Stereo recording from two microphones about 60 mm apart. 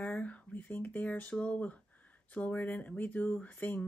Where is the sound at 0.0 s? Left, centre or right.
Left.